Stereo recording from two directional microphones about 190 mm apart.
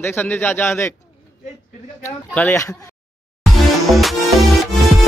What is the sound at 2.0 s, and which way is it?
Speech, 10° left (ahead or behind).